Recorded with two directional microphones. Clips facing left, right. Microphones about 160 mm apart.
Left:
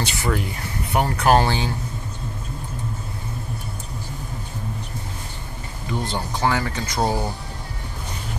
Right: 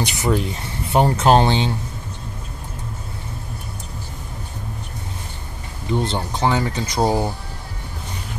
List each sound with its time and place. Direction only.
0.0 s speech: 20° right (ahead or behind)
5.9 s speech: 20° right (ahead or behind)